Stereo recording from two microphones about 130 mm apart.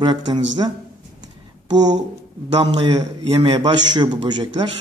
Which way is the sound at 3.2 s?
45° right (ahead or behind).